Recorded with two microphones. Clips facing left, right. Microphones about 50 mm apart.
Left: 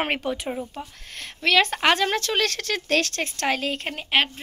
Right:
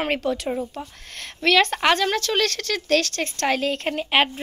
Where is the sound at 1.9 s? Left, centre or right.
Centre.